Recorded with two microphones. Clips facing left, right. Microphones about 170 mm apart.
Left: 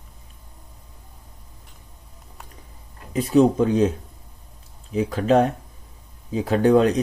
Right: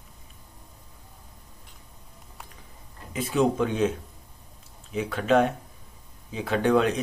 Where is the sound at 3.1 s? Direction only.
40° left (ahead or behind).